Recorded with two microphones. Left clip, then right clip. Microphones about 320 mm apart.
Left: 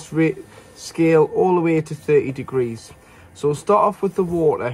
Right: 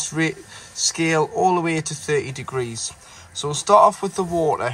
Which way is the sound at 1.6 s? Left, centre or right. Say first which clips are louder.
Left 4 dB; right.